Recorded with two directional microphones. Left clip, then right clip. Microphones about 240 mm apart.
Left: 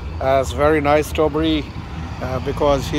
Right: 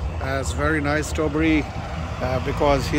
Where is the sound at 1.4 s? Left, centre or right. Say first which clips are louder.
Left 1 dB; centre.